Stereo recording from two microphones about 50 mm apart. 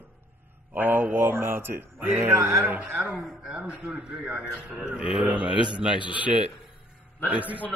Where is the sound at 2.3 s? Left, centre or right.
Right.